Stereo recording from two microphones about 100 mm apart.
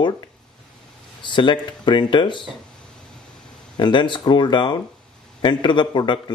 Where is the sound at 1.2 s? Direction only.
55° left (ahead or behind).